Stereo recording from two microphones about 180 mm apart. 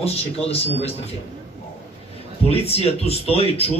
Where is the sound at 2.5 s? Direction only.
35° left (ahead or behind).